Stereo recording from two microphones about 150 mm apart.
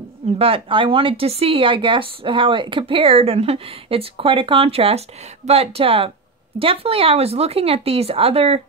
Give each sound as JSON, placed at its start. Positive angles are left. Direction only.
{"t": 0.4, "sound": "speech", "side_deg": -35}